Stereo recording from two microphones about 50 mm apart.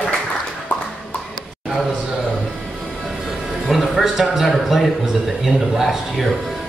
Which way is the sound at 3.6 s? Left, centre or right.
Centre.